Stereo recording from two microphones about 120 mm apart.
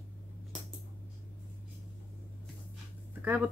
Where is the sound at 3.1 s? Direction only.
15° right (ahead or behind).